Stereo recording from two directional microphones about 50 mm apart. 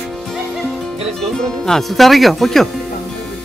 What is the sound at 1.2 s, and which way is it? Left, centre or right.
Speech, centre.